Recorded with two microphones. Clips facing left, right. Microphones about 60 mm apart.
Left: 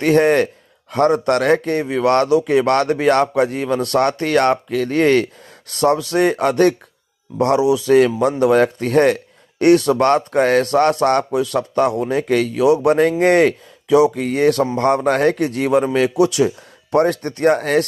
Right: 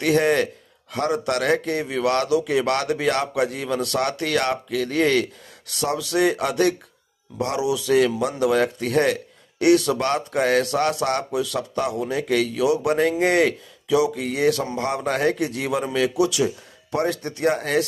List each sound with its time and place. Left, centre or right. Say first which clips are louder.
0.0 s a man's voice: left 5 dB; left